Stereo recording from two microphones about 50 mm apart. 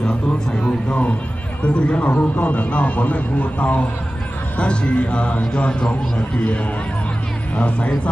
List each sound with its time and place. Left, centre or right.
0.5 s a man's voice: left
7.5 s a man's voice: left